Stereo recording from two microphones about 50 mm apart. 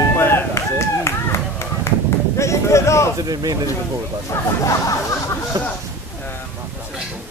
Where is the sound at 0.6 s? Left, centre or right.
Left.